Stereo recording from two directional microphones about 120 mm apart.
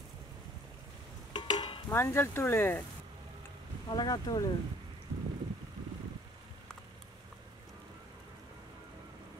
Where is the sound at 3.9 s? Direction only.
35° left (ahead or behind).